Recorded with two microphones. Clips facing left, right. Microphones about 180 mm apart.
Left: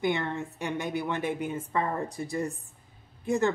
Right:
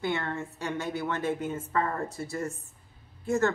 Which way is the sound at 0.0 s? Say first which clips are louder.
Left 2 dB; 15° left (ahead or behind).